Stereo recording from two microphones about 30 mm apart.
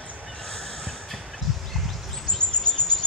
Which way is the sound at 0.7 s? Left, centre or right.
Centre.